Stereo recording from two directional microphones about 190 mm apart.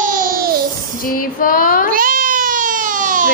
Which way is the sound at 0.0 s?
45° right (ahead or behind).